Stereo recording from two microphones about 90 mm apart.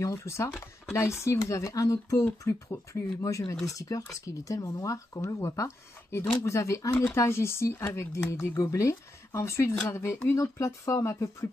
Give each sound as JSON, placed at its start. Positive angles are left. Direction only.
{"t": 0.0, "sound": "speech", "side_deg": 35}